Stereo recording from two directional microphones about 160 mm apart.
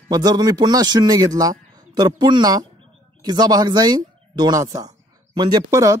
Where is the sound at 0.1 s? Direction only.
25° right (ahead or behind).